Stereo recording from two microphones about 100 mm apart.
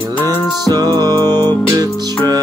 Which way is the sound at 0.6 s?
40° right (ahead or behind).